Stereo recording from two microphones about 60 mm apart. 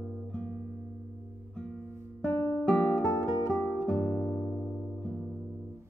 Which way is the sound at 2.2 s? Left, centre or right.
Left.